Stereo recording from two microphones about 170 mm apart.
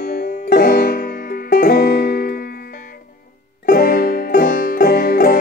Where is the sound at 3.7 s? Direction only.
60° left (ahead or behind).